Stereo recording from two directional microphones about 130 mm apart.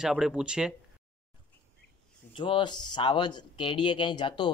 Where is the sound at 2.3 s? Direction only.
40° left (ahead or behind).